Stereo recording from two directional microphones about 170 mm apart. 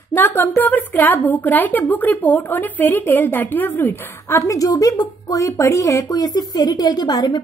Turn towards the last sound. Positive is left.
turn(degrees=25)  # may be behind; listen again after turning